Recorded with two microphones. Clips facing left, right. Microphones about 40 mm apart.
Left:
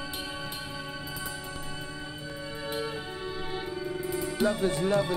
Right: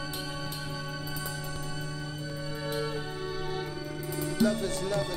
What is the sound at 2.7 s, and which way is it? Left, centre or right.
Music, centre.